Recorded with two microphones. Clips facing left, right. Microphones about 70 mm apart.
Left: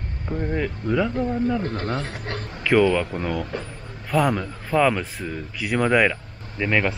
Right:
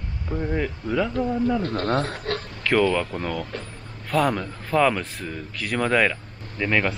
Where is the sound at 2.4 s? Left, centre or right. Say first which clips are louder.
Left 3 dB; left.